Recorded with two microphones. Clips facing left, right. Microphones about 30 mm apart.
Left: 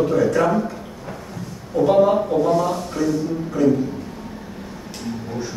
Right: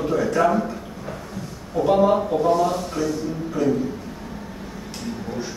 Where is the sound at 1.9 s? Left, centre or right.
Centre.